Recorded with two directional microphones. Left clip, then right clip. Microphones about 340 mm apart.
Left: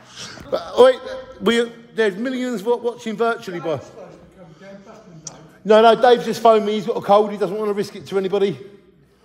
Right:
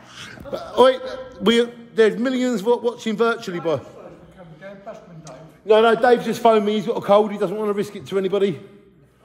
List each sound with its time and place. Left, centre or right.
0.2 s dog: centre
1.0 s a man's voice: centre
5.2 s a sound: left
5.9 s a man's voice: centre